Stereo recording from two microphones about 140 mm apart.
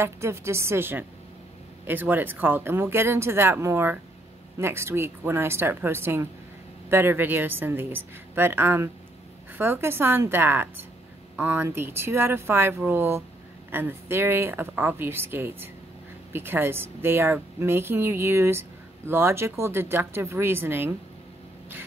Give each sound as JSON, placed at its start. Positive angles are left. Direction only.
{"t": 0.0, "sound": "a woman's voice", "side_deg": -20}